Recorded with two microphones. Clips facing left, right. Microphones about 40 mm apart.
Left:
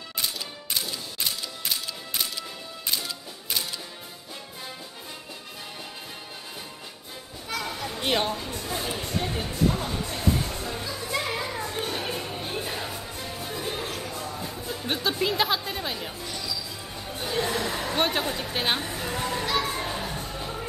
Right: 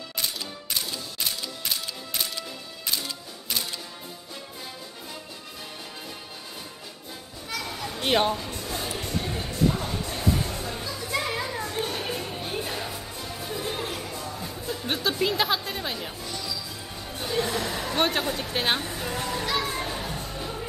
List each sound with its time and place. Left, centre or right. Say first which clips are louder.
3.0 s music: even; centre
7.4 s a sound: left 1 dB; centre
8.0 s speech: right 3 dB; centre
8.5 s a sound: left 1 dB; centre
9.7 s music: even; centre
10.4 s children playing: even; centre
11.7 s music: even; centre
14.0 s music: left 1 dB; centre
17.6 s speech: even; centre
19.4 s a sound: even; centre
20.2 s music: even; centre